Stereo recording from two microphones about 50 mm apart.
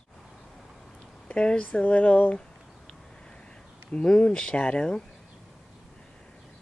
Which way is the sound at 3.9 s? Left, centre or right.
Centre.